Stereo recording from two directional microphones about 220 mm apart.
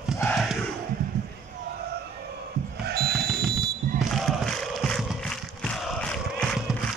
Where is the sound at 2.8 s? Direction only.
45° right (ahead or behind).